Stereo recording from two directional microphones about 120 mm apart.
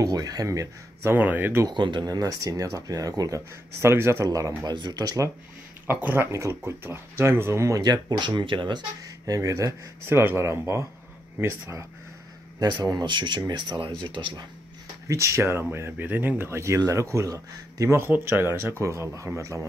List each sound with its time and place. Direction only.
0.0 s speech: 30° right (ahead or behind)
1.1 s speech: 15° right (ahead or behind)
1.7 s speech: 40° right (ahead or behind)
5.9 s speech: 15° right (ahead or behind); by 9.1 s 40° right (ahead or behind)
9.2 s speech: 25° right (ahead or behind)
12.5 s speech: 35° right (ahead or behind)
15.0 s speech: 25° right (ahead or behind)